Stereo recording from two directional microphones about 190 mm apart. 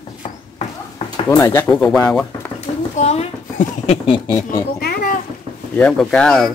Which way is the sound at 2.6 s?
35° left (ahead or behind).